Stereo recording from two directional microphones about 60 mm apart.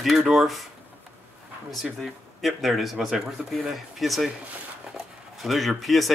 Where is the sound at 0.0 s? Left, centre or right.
Centre.